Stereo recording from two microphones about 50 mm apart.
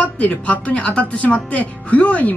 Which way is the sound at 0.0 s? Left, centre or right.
Left.